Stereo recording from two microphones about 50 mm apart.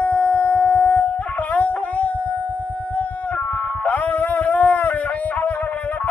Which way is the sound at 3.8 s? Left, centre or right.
Left.